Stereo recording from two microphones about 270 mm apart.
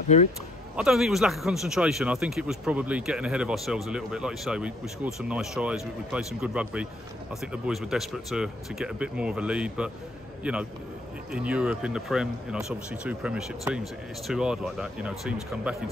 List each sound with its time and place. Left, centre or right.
0.1 s speech: left
0.7 s speech: centre